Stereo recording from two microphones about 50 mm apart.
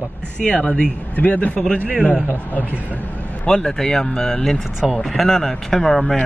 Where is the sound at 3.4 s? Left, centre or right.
Centre.